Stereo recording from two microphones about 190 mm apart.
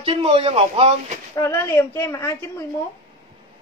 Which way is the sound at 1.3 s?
15° left (ahead or behind).